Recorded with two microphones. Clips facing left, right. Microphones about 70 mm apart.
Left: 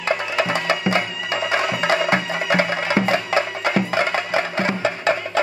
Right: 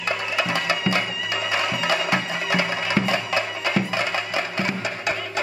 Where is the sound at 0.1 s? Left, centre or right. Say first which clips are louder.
Left 4 dB; left.